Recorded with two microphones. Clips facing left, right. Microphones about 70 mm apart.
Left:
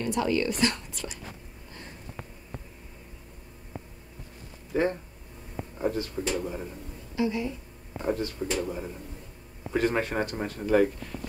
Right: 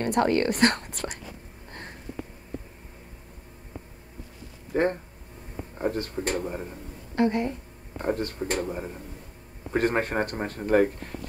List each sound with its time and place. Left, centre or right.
0.0 s speech: right
1.7 s sniff: right
4.7 s a man's voice: right
7.2 s speech: right
8.6 s speech: right
9.7 s a man's voice: right